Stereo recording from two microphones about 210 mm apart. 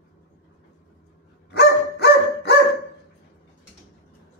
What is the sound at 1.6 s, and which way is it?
Dog, 50° left (ahead or behind).